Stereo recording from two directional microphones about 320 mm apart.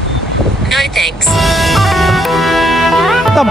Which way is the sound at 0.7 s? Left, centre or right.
Centre.